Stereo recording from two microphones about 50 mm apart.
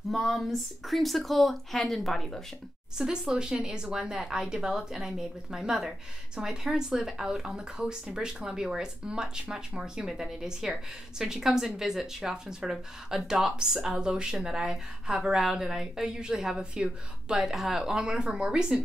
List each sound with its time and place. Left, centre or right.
0.1 s speech: centre
3.0 s speech: centre